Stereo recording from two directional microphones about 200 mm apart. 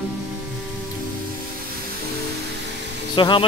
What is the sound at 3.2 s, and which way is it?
Speech, 25° left (ahead or behind).